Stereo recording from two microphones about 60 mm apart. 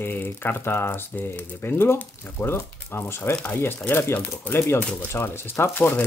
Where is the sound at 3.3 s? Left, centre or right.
Centre.